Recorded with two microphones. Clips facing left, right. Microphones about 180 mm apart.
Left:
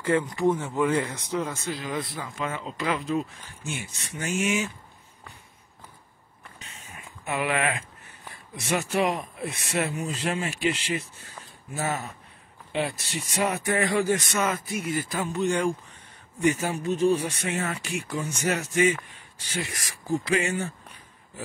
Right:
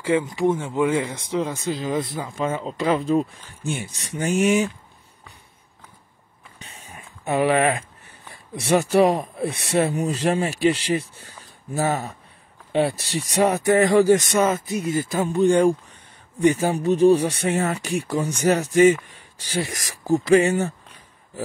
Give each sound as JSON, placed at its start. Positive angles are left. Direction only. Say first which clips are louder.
{"t": 0.5, "sound": "speech", "louder": "right 2 dB", "side_deg": -25}
{"t": 6.6, "sound": "a sound", "louder": "right 4 dB", "side_deg": -35}
{"t": 8.5, "sound": "speech", "louder": "right 8 dB", "side_deg": -35}
{"t": 14.5, "sound": "speech", "louder": "right 5 dB", "side_deg": -25}